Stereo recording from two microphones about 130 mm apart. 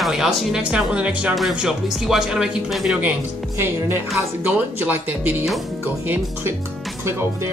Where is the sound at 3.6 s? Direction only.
20° right (ahead or behind).